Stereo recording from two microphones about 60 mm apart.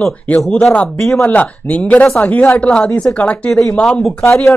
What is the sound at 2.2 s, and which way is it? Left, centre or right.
Speech, left.